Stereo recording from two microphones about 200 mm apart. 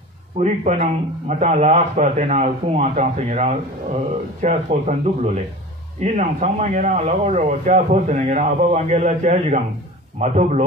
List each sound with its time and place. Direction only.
0.4 s a man's voice: 35° right (ahead or behind)